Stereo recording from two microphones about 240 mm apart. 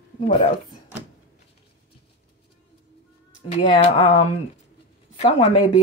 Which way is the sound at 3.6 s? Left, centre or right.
Left.